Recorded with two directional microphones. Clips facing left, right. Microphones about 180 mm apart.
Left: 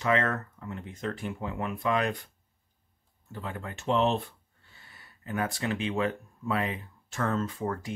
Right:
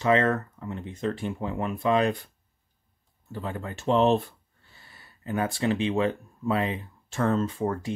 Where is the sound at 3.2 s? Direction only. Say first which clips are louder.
Right 4 dB; 30° right (ahead or behind).